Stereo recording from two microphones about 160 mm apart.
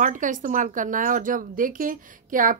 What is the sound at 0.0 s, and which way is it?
Speech, 55° right (ahead or behind).